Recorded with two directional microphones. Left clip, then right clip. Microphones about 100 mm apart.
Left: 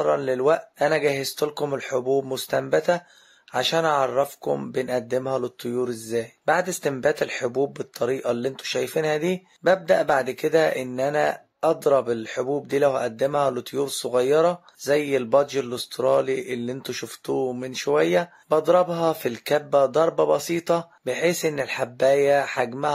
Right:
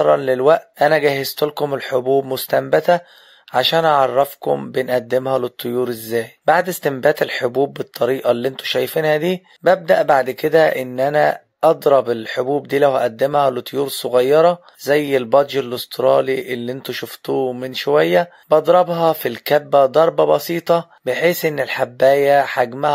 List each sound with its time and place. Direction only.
0.0 s speech: 40° right (ahead or behind)
4.2 s speech: 25° right (ahead or behind)
4.8 s speech: 40° right (ahead or behind)